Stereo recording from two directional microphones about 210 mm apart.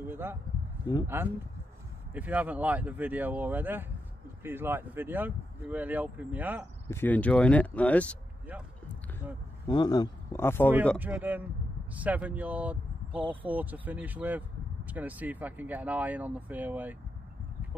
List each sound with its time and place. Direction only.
0.0 s speech: 10° right (ahead or behind)
6.9 s speech: 10° left (ahead or behind)
9.7 s speech: 20° left (ahead or behind)
11.0 s speech: 10° right (ahead or behind)